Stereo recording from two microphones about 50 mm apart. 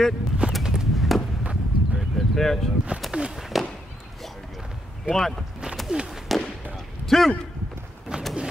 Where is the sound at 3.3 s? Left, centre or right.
Centre.